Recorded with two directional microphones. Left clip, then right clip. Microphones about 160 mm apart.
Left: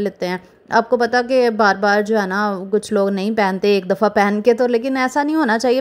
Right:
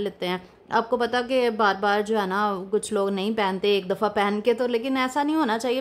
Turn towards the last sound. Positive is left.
turn(degrees=35)  # may be behind; listen again after turning